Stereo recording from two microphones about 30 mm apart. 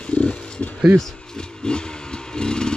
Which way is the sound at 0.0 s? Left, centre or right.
Left.